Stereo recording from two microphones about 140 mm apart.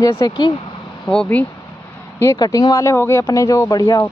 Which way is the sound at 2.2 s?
25° left (ahead or behind).